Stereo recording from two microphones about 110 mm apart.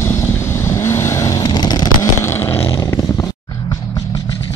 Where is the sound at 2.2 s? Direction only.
20° left (ahead or behind).